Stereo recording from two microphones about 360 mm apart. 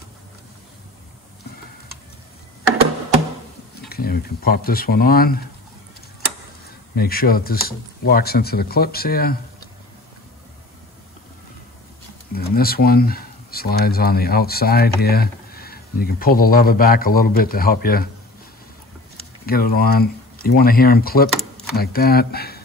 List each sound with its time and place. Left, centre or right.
3.9 s speech: left
7.0 s speech: left
12.4 s speech: left
19.1 s speech: left
21.3 s a sound: centre
21.7 s speech: left